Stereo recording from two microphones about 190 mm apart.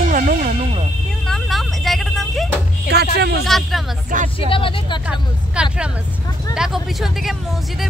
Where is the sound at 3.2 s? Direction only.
60° right (ahead or behind).